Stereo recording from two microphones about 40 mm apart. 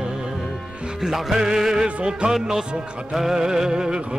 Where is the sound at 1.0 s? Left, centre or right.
Centre.